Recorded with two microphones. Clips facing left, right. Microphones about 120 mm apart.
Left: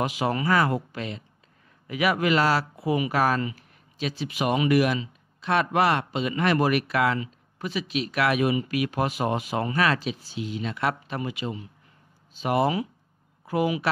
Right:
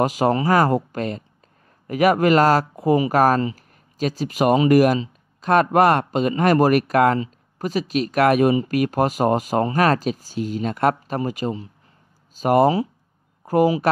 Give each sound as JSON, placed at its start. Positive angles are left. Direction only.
{"t": 0.0, "sound": "speech", "side_deg": -40}